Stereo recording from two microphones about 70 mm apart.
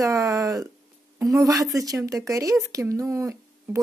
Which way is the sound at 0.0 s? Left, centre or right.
Right.